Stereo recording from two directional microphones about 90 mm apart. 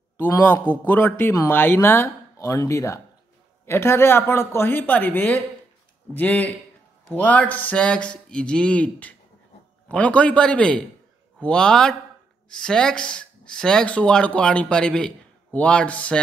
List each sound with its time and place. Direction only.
0.7 s speech: 20° left (ahead or behind)